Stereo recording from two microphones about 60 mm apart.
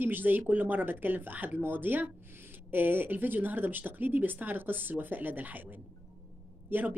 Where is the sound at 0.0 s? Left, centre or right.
Right.